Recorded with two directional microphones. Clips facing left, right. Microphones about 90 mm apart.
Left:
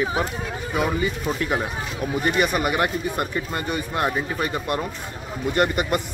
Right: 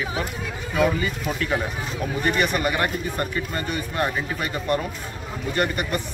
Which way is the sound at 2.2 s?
10° left (ahead or behind).